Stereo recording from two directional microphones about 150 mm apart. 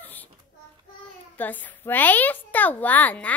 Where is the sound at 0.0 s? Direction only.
10° left (ahead or behind).